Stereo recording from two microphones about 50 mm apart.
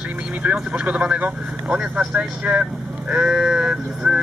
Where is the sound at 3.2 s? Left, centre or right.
Centre.